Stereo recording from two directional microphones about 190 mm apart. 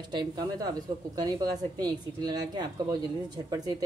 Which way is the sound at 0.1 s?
20° right (ahead or behind).